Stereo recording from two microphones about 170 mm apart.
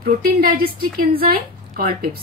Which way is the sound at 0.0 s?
60° right (ahead or behind).